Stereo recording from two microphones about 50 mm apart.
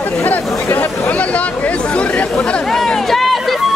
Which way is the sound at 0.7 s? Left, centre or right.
Left.